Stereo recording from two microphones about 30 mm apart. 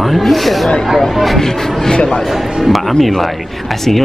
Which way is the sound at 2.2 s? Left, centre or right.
Centre.